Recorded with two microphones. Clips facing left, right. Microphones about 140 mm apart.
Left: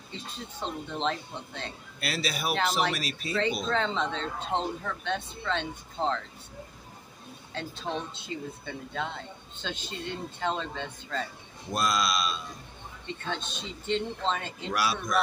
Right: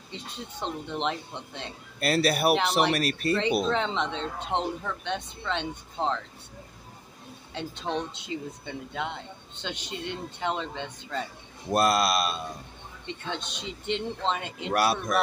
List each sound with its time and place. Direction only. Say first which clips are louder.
0.6 s speech: right 2 dB; 20° right (ahead or behind)
2.0 s speech: right 9 dB; 50° right (ahead or behind)
3.6 s speech: right 1 dB; 20° right (ahead or behind)
7.5 s speech: right 3 dB; 20° right (ahead or behind)
11.7 s speech: right 5 dB; 60° right (ahead or behind)
13.0 s speech: even; 20° right (ahead or behind)
14.7 s speech: right 4 dB; 55° right (ahead or behind)